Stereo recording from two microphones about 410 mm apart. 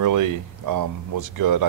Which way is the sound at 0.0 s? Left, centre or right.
Right.